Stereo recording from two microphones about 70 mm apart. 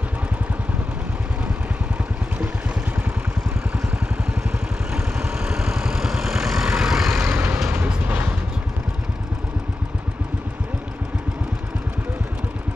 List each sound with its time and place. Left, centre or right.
4.9 s vehicle: centre
7.2 s vehicle: right